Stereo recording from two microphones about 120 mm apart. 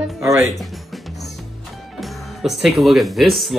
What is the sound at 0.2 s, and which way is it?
Speech, 25° right (ahead or behind).